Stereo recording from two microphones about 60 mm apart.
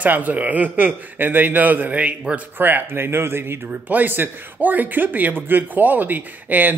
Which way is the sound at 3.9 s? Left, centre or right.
Right.